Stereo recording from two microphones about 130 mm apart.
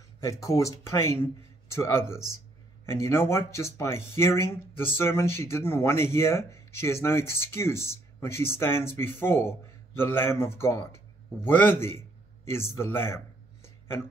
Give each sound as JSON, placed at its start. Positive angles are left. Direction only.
{"t": 0.2, "sound": "a man's voice", "side_deg": 25}